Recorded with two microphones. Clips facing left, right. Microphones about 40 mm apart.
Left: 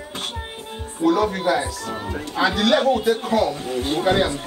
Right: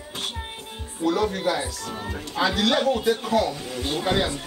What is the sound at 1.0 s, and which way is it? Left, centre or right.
A man's voice, centre.